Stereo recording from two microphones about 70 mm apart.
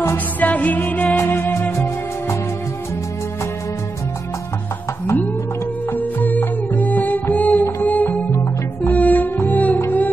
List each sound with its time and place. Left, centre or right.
0.4 s music: left
5.9 s music: left